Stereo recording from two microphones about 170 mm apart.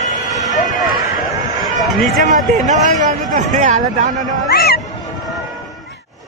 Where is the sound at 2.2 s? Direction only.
45° right (ahead or behind).